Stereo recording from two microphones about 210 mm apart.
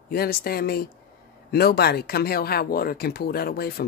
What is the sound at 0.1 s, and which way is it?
Speech, 45° left (ahead or behind).